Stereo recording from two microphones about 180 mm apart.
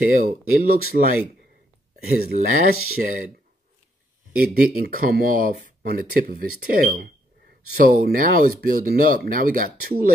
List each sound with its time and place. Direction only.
0.0 s speech: 50° right (ahead or behind)
2.0 s speech: 60° right (ahead or behind)
4.4 s speech: 55° right (ahead or behind)